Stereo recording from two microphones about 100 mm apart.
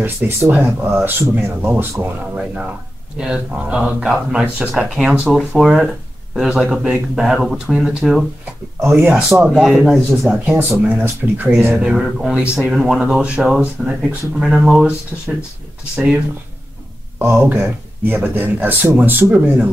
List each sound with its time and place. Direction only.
0.0 s speech: 25° right (ahead or behind); by 8.3 s 5° right (ahead or behind)
8.8 s speech: 20° right (ahead or behind)
9.1 s speech: 5° right (ahead or behind)
10.4 s speech: 20° right (ahead or behind)
17.4 s speech: 20° right (ahead or behind)